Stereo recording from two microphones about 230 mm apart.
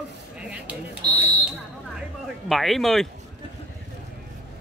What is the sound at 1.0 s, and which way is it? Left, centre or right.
Speech, centre.